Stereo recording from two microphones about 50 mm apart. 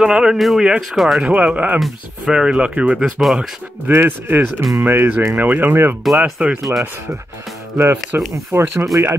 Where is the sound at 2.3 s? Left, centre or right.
Centre.